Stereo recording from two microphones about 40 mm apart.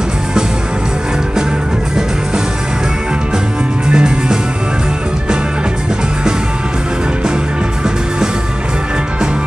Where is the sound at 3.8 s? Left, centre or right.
Right.